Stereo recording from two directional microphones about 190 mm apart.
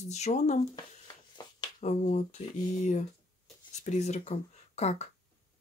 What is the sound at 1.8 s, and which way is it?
Speech, 40° left (ahead or behind).